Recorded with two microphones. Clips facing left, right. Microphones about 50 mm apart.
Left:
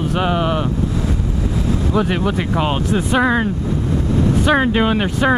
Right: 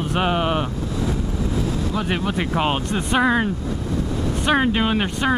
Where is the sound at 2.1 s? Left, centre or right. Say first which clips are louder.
Left 3 dB; centre.